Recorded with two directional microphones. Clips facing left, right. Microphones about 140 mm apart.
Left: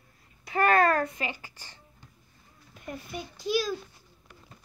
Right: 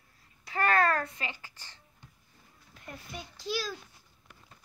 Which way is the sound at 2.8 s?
15° left (ahead or behind).